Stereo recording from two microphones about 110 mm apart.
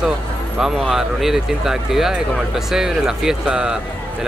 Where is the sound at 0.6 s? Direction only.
5° right (ahead or behind).